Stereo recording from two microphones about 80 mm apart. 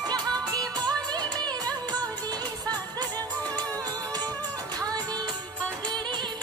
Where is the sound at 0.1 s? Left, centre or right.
Right.